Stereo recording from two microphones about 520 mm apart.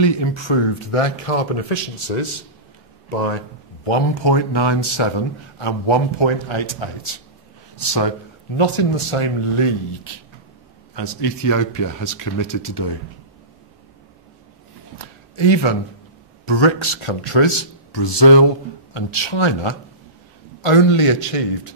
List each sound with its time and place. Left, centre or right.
0.0 s speech: left
3.8 s a man's voice: left
4.3 s speech: left
7.8 s speech: left
8.5 s speech: left
11.0 s speech: left
15.0 s a sound: left
16.4 s speech: left
18.9 s speech: left
20.6 s a man's voice: left